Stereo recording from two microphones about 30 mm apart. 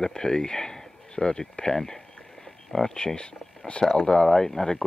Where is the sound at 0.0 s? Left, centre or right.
Left.